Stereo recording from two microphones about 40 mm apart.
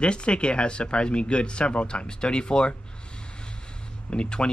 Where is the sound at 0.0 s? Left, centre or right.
Left.